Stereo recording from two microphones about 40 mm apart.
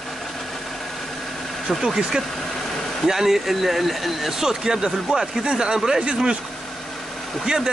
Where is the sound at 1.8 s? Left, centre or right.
Centre.